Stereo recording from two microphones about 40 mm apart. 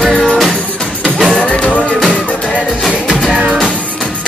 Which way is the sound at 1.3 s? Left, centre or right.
Left.